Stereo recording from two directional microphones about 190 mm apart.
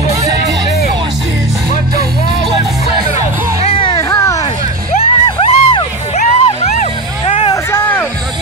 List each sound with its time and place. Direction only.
0.1 s music: 15° right (ahead or behind)
3.6 s music: 25° left (ahead or behind)
4.1 s a sound: 15° left (ahead or behind)
4.9 s music: 30° left (ahead or behind)
7.7 s music: 10° left (ahead or behind)